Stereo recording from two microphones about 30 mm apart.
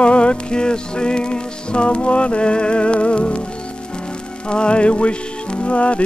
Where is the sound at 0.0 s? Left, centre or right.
Left.